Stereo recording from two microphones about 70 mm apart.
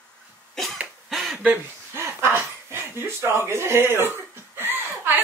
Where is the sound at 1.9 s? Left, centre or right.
Right.